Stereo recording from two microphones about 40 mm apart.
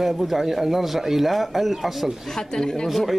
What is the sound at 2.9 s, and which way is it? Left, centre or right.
Speech, centre.